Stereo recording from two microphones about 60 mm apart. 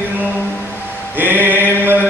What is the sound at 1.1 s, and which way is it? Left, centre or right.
Mantra, right.